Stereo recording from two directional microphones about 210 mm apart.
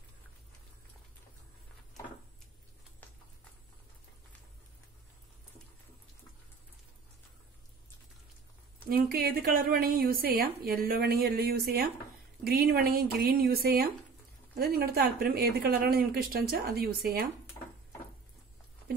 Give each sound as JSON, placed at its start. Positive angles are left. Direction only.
{"t": 8.8, "sound": "a woman's voice", "side_deg": -45}